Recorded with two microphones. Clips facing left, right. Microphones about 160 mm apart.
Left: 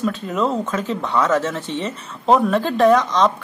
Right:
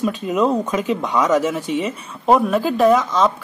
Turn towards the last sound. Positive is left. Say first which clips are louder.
# even
turn(degrees=-5)  # may be behind; listen again after turning